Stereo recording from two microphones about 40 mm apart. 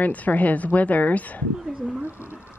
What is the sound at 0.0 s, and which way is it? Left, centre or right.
A woman's voice, left.